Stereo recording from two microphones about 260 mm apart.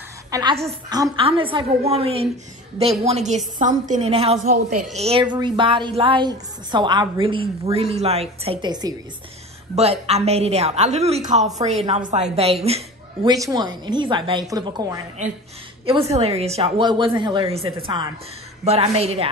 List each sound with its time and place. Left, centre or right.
0.3 s a woman's voice: centre
4.5 s a woman's voice: right
4.9 s a woman's voice: right